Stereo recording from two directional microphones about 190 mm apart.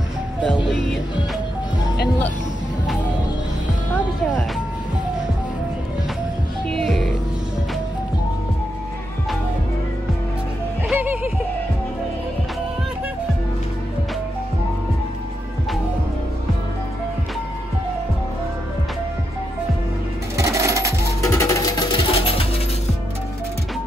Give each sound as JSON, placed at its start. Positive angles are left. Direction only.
{"t": 6.7, "sound": "music", "side_deg": 0}
{"t": 10.9, "sound": "music", "side_deg": -10}
{"t": 20.3, "sound": "sewing machine", "side_deg": -15}
{"t": 21.2, "sound": "music", "side_deg": 15}